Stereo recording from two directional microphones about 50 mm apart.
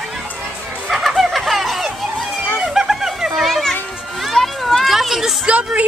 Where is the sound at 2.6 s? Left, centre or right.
Centre.